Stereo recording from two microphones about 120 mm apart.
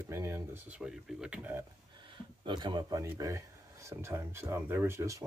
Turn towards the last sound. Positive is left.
turn(degrees=-25)  # may be behind; listen again after turning